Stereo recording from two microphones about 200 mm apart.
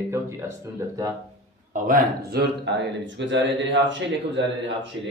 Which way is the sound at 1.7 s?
45° right (ahead or behind).